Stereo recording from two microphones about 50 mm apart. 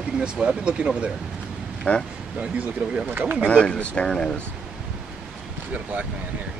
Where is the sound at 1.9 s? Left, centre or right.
Left.